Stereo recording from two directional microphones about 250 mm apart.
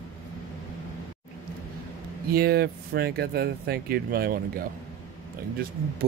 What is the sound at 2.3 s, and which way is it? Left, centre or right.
Speech, right.